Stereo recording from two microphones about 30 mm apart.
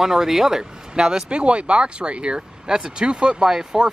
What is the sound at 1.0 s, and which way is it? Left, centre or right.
Speech, right.